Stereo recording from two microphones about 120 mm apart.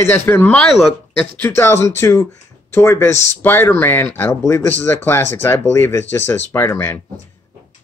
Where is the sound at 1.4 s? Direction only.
20° left (ahead or behind).